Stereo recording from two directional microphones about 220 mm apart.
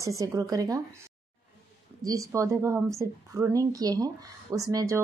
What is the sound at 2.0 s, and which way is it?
A woman's voice, 15° right (ahead or behind).